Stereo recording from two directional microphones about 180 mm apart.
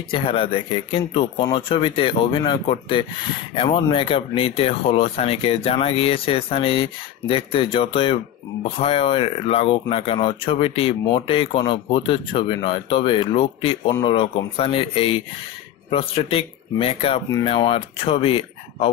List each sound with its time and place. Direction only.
0.1 s speech: 30° left (ahead or behind)